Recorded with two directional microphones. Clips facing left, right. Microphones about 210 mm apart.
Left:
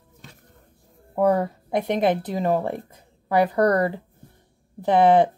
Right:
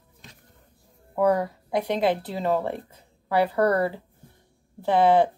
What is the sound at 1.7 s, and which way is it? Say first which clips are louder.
Speech: left 2 dB; 20° left (ahead or behind).